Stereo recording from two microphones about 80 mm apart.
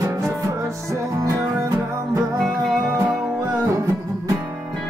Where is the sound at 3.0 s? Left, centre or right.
Right.